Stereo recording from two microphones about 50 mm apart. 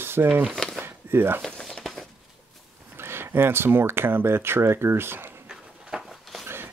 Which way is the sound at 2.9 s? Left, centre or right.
Right.